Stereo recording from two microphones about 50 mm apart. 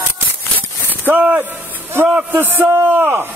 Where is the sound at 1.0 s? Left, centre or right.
Right.